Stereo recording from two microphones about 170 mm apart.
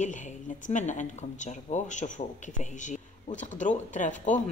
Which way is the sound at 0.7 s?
45° left (ahead or behind).